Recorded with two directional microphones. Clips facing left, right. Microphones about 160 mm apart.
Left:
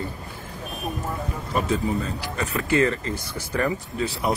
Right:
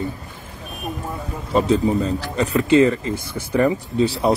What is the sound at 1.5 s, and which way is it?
Speech, 30° right (ahead or behind).